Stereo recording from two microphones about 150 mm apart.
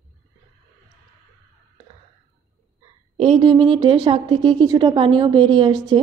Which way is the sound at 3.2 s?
35° right (ahead or behind).